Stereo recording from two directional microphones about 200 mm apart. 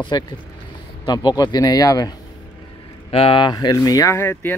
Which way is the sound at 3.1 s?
25° left (ahead or behind).